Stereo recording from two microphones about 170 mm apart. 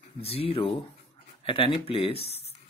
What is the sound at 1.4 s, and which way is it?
Speech, 30° left (ahead or behind).